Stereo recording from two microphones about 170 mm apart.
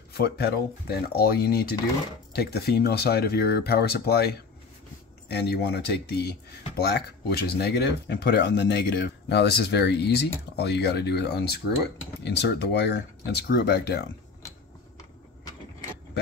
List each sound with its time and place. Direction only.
0.2 s speech: 70° left (ahead or behind)